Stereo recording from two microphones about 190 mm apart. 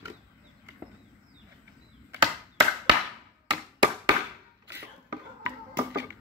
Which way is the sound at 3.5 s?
20° right (ahead or behind).